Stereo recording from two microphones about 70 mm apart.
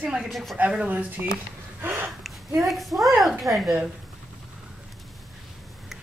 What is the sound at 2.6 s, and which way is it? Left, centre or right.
A woman's voice, centre.